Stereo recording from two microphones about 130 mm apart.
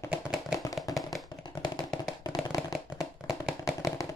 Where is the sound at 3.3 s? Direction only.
25° left (ahead or behind).